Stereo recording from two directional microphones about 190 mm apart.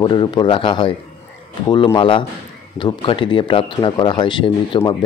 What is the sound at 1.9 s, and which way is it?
Speech, 25° left (ahead or behind).